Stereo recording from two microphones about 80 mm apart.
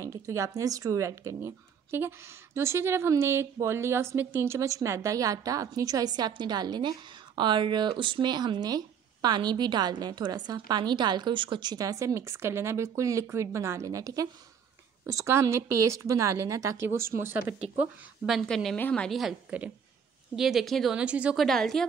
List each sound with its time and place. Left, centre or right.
0.0 s a woman's voice: right
11.8 s speech: right
15.0 s speech: right
18.5 s speech: centre
18.8 s a woman's voice: centre
19.0 s speech: centre
20.3 s speech: centre
20.9 s speech: centre
21.4 s speech: centre